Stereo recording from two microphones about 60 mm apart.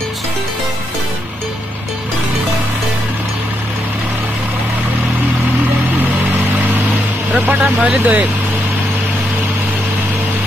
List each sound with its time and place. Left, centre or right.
7.3 s speech: right